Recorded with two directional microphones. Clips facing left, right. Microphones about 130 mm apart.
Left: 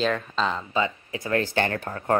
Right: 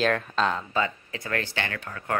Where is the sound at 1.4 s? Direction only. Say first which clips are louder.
Left 7 dB; 40° left (ahead or behind).